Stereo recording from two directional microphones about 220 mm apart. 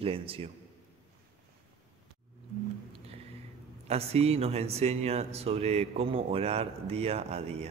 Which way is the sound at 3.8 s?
30° right (ahead or behind).